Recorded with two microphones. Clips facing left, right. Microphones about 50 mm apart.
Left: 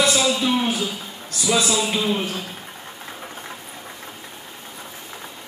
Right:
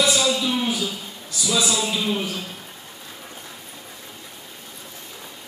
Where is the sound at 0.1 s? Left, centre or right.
Centre.